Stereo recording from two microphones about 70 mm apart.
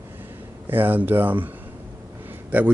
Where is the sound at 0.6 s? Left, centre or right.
Right.